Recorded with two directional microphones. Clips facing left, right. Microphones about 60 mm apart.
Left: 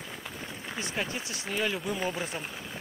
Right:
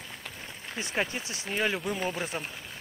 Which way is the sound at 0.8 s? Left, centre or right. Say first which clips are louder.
Right 3 dB; right.